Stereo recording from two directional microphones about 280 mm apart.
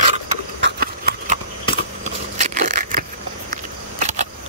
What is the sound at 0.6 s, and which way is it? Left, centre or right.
Clip-clop, right.